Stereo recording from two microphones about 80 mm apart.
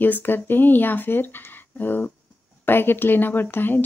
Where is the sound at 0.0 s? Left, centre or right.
Left.